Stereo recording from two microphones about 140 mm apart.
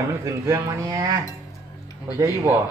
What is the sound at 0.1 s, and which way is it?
Speech, 20° right (ahead or behind).